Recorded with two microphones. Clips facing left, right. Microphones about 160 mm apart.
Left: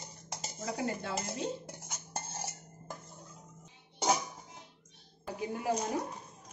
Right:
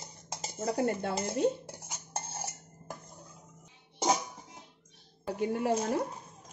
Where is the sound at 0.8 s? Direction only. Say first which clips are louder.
Right 3 dB; 55° right (ahead or behind).